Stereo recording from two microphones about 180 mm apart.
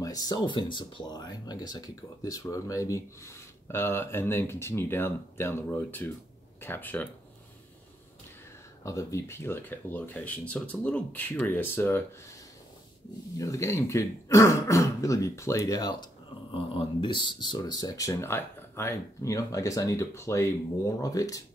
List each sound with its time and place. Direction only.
0.0 s speech: 20° left (ahead or behind)
8.8 s speech: 15° left (ahead or behind)
13.4 s speech: 15° left (ahead or behind)